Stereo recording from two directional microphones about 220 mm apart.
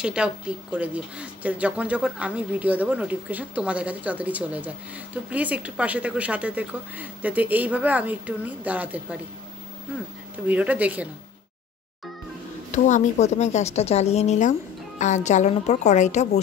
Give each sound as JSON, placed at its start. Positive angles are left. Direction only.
{"t": 0.0, "sound": "speech", "side_deg": -5}
{"t": 10.3, "sound": "speech", "side_deg": -5}
{"t": 12.7, "sound": "speech", "side_deg": 35}